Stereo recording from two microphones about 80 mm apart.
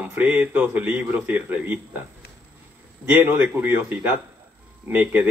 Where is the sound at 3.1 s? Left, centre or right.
Right.